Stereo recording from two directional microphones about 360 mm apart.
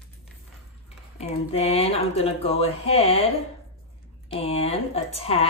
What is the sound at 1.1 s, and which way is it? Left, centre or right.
Speech, centre.